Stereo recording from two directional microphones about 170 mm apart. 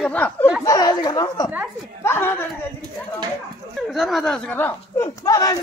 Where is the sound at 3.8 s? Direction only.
Centre (ahead or behind); by 5.6 s 20° left (ahead or behind).